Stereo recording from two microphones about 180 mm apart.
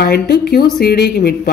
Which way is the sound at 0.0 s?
60° left (ahead or behind).